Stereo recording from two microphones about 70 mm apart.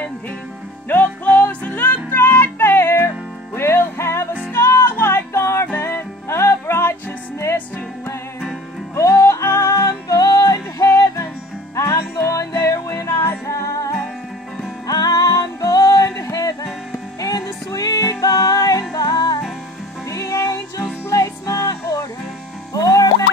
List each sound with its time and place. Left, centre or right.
0.8 s music: left
8.9 s music: left
14.9 s music: left
20.1 s music: left